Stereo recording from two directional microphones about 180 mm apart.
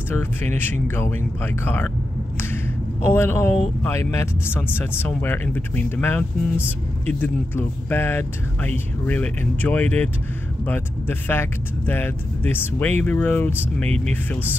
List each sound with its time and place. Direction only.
0.1 s speech: 10° left (ahead or behind)
3.1 s speech: 10° left (ahead or behind)